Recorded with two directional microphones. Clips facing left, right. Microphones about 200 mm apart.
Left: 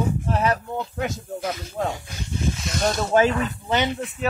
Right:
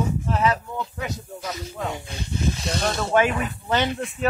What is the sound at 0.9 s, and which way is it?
Rapping, 55° left (ahead or behind).